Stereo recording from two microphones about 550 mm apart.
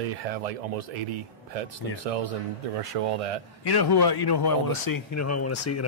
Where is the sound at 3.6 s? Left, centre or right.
Left.